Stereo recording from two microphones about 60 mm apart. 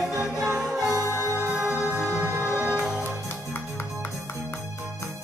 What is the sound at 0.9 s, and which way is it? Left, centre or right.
Music, left.